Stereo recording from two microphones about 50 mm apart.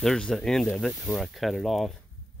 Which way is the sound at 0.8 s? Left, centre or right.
Centre.